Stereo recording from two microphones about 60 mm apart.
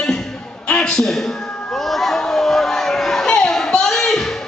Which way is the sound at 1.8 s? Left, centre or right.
Centre.